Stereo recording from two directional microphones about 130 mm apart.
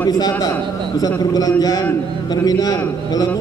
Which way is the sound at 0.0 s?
30° left (ahead or behind).